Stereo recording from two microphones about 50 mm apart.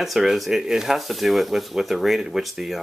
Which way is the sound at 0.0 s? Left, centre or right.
Centre.